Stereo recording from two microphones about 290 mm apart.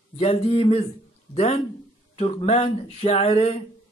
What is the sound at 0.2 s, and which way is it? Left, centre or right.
A man's voice, left.